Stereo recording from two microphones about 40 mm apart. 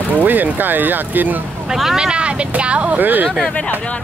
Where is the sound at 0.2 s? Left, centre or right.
Right.